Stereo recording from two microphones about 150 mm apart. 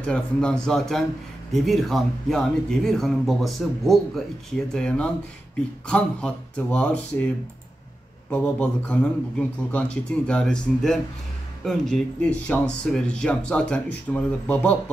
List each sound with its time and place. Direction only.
0.0 s speech: 5° left (ahead or behind)